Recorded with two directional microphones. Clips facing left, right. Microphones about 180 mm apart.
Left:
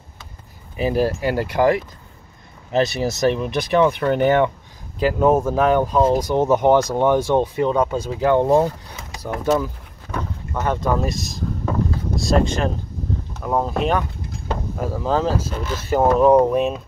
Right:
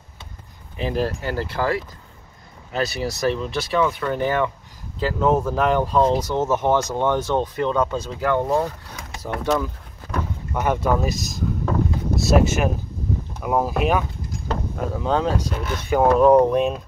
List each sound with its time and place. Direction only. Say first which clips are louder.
0.7 s speech: left 4 dB; 10° left (ahead or behind)
2.8 s speech: left 4 dB; 20° left (ahead or behind)
4.9 s speech: left 3 dB; 10° left (ahead or behind)
8.2 s speech: left 5 dB; 25° left (ahead or behind)
9.2 s speech: left 3 dB; 5° left (ahead or behind)
10.5 s speech: even; 10° right (ahead or behind)